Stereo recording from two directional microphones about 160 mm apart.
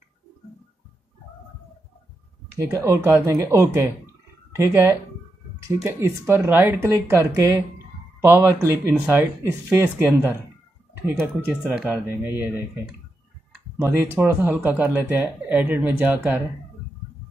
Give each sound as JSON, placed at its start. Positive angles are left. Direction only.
{"t": 2.5, "sound": "speech", "side_deg": -15}